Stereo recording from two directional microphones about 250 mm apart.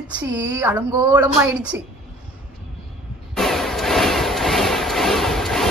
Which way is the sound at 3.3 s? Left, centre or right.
Centre.